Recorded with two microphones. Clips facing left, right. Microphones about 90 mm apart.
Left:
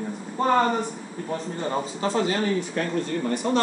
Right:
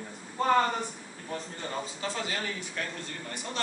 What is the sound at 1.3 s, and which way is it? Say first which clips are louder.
A man's voice: left 8 dB; 35° left (ahead or behind).